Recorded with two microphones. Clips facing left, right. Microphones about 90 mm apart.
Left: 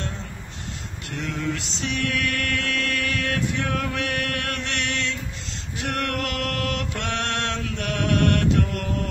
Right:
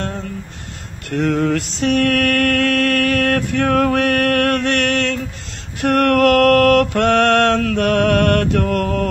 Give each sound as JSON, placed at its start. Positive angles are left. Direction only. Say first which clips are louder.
{"t": 1.1, "sound": "mantra", "louder": "right 12 dB", "side_deg": -50}